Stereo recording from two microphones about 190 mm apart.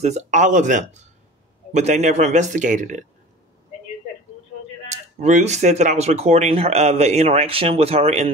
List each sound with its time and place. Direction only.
0.0 s speech: 35° right (ahead or behind)
4.8 s speech: 35° right (ahead or behind)